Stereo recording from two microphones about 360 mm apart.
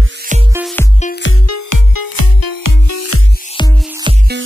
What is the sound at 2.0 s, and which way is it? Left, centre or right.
Music, left.